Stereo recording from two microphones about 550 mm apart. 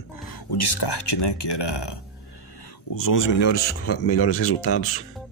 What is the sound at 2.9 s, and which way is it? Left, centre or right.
Speech, left.